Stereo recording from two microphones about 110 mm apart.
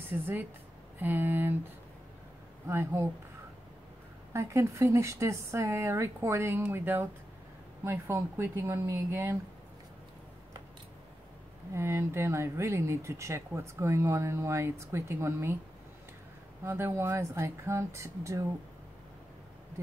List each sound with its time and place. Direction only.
0.1 s speech: 15° right (ahead or behind)
2.7 s speech: 20° right (ahead or behind)
4.3 s speech: 25° right (ahead or behind)
11.7 s speech: 25° right (ahead or behind)
16.6 s speech: 20° right (ahead or behind)